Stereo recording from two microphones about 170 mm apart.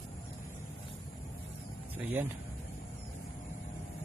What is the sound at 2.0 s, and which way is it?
Speech, 10° right (ahead or behind).